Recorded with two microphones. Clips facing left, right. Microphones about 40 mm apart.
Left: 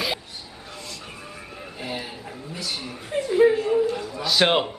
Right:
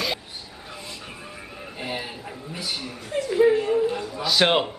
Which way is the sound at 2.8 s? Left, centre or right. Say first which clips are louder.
Left 2 dB; centre.